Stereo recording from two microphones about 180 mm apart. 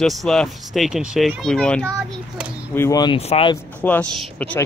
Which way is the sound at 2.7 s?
20° left (ahead or behind).